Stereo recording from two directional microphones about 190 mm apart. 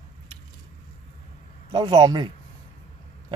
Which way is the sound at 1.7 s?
20° right (ahead or behind).